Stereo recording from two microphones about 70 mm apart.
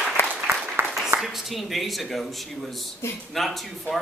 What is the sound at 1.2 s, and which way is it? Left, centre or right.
Speech, centre.